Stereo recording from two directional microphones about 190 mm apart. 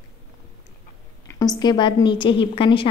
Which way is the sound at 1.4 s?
20° left (ahead or behind).